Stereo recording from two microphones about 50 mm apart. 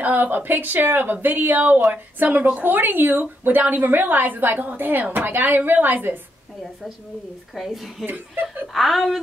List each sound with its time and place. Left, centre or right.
0.0 s speech: right
7.5 s a woman's voice: centre
8.1 s speech: right
8.7 s a woman's voice: centre